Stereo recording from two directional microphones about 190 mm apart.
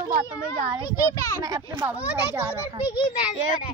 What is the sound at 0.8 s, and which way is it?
Speech, 20° left (ahead or behind).